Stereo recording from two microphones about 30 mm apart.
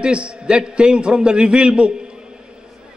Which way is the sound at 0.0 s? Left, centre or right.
Right.